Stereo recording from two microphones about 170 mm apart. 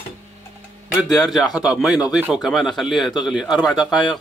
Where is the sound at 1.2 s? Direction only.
Centre (ahead or behind).